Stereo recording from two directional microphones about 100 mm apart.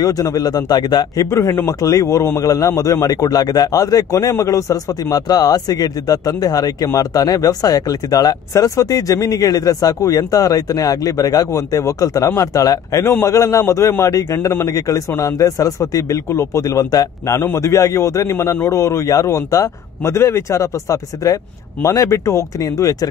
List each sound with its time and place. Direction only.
0.0 s a man's voice: 35° left (ahead or behind)
1.2 s a man's voice: 30° left (ahead or behind)